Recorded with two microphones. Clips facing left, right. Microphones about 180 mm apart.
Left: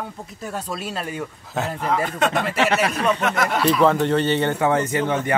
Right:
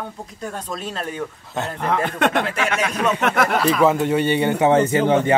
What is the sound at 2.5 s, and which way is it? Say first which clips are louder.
Speech: left 3 dB; 35° left (ahead or behind).